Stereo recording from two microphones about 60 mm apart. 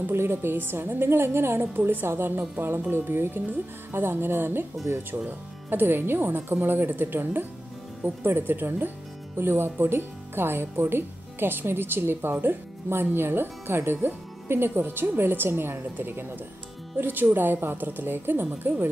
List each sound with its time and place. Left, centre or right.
0.0 s speech: right
5.7 s speech: right